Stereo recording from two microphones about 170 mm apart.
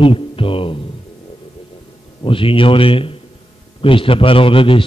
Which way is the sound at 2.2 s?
30° left (ahead or behind).